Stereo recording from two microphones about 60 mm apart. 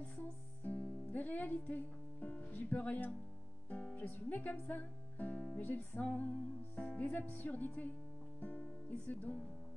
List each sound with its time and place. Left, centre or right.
0.2 s speech: left
5.7 s speech: left